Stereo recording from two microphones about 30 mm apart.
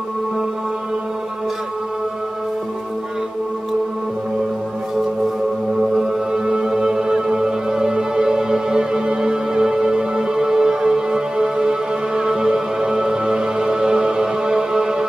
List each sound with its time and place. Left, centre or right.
5.9 s music: right